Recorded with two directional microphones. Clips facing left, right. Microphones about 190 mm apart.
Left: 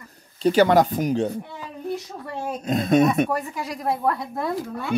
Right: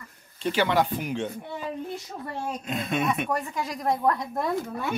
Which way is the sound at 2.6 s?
40° left (ahead or behind).